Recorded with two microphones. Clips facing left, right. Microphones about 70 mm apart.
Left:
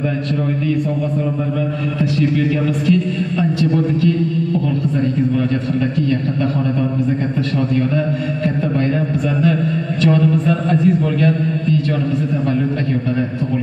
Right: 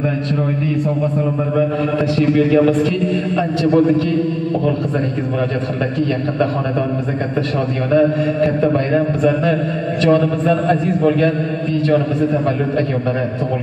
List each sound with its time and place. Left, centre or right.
2.1 s a man's voice: right
8.9 s a man's voice: right